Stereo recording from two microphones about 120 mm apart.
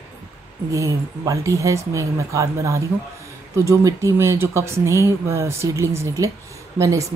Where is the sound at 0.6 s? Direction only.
25° right (ahead or behind).